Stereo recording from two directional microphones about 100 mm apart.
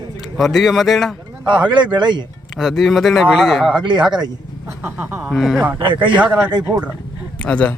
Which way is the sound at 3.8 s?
50° right (ahead or behind).